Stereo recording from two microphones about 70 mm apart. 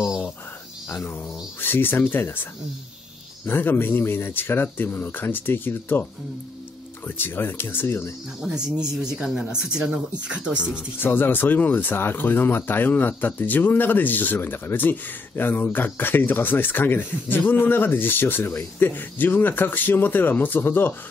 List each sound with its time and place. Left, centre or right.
0.8 s a sound: left
3.4 s speech: left
7.1 s speech: left
8.4 s speech: centre
11.0 s speech: left